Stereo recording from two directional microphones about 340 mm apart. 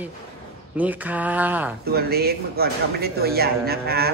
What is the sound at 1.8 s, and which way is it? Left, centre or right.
Speech, right.